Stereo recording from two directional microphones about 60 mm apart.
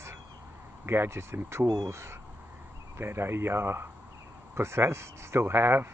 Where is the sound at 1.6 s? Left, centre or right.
Right.